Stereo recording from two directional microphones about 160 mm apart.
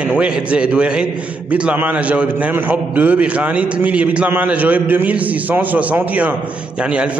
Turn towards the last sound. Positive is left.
turn(degrees=-5)  # may be behind; listen again after turning